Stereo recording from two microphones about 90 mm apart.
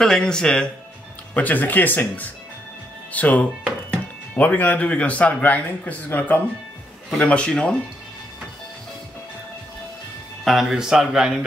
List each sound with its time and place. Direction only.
0.0 s speech: 5° left (ahead or behind)
10.4 s speech: 5° right (ahead or behind)